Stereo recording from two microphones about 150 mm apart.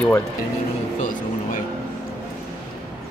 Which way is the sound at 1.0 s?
60° left (ahead or behind).